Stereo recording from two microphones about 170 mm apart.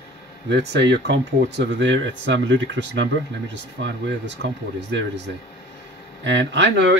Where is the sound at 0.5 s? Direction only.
85° right.